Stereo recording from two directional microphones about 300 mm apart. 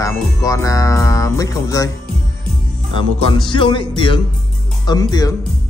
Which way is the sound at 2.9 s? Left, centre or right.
Centre.